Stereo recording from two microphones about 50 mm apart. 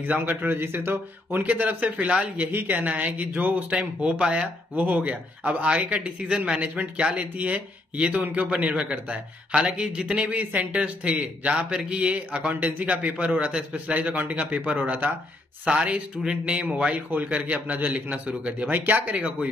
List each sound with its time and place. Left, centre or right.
0.0 s speech: right
1.3 s speech: right
3.7 s a man's voice: right
4.7 s a man's voice: right
10.3 s speech: right
10.7 s a man's voice: right
13.9 s speech: right
15.6 s a man's voice: right
16.9 s a man's voice: right
18.7 s speech: right